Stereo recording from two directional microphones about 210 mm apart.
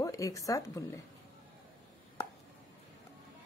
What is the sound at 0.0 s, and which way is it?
A woman's voice, 15° left (ahead or behind).